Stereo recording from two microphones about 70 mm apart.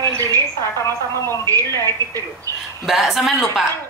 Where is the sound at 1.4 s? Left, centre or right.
Right.